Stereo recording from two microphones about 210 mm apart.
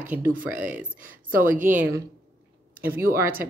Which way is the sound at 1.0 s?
40° right (ahead or behind).